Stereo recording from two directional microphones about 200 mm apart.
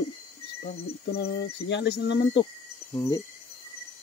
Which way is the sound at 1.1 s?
55° left (ahead or behind).